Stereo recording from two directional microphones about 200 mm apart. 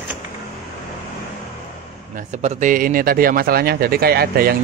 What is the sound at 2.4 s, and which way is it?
Speech, 35° right (ahead or behind).